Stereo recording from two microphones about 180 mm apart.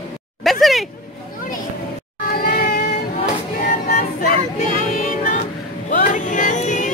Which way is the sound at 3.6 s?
45° left (ahead or behind).